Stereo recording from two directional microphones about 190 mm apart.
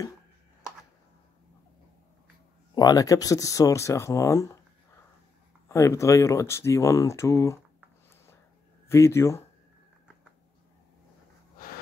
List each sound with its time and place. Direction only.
2.7 s speech: 20° left (ahead or behind)
5.7 s speech: 15° left (ahead or behind)
8.8 s speech: 15° left (ahead or behind)
11.5 s a sound: 45° left (ahead or behind)